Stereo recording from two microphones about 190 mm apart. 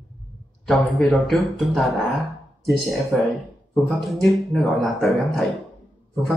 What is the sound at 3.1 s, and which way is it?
Speech, 5° left (ahead or behind).